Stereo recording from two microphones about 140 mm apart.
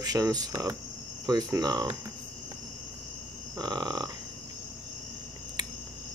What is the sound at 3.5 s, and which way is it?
Speech, 30° right (ahead or behind).